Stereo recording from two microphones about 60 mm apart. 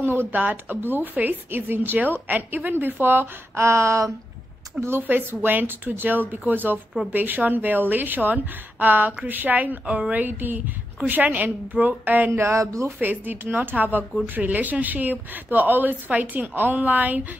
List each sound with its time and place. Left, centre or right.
0.0 s a woman's voice: right
0.4 s speech: right
0.8 s a woman's voice: right
4.7 s a sound: right
5.0 s a woman's voice: right
12.3 s a sound: right
13.0 s a woman's voice: right